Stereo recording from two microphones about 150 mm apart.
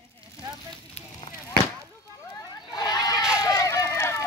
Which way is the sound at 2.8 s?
25° left (ahead or behind).